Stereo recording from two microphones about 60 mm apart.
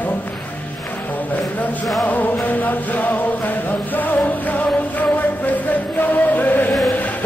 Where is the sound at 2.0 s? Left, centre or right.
Left.